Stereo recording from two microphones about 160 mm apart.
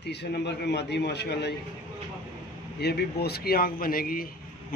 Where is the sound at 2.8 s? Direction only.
90° left; by 4.3 s 65° left (ahead or behind).